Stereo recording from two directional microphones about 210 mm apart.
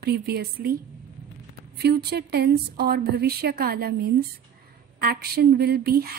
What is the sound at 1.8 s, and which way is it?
A woman's voice, 50° right (ahead or behind).